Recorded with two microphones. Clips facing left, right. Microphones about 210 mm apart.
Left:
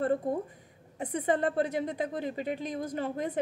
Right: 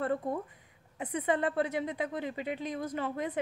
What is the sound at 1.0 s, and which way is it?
A woman's voice, 35° left (ahead or behind).